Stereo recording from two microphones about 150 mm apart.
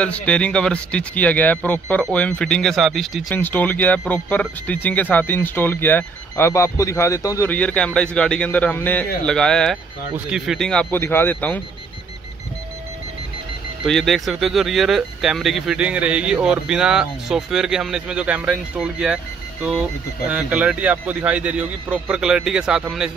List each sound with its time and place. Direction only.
0.0 s speech: 10° left (ahead or behind)
3.3 s speech: 10° left (ahead or behind)
13.8 s speech: centre (ahead or behind)
20.2 s speech: 10° right (ahead or behind)